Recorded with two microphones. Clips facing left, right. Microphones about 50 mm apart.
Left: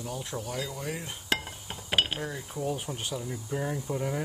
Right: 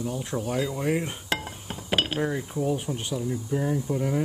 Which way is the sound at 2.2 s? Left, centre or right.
Right.